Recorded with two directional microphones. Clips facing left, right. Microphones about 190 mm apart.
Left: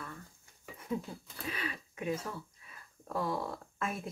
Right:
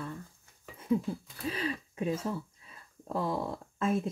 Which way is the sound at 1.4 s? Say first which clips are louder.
Right 6 dB; 30° right (ahead or behind).